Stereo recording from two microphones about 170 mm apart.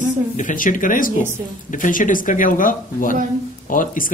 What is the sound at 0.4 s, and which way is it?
Speech, 50° left (ahead or behind).